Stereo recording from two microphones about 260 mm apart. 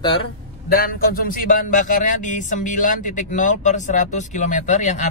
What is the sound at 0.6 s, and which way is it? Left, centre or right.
A man's voice, left.